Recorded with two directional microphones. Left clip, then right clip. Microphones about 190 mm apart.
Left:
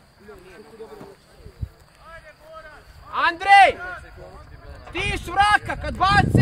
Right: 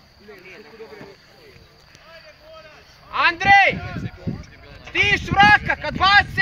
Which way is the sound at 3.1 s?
70° left (ahead or behind).